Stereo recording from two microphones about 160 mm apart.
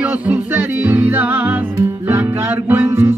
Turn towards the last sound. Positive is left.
turn(degrees=-15)  # may be behind; listen again after turning